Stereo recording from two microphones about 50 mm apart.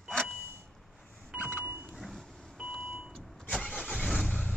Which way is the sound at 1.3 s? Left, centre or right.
Right.